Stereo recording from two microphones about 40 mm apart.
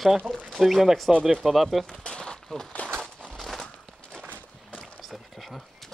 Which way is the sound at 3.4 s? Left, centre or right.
Centre.